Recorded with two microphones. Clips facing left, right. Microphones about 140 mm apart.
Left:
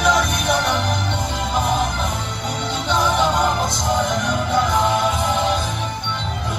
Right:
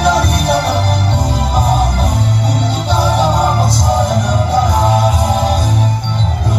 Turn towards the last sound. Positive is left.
turn(degrees=-40)  # may be behind; listen again after turning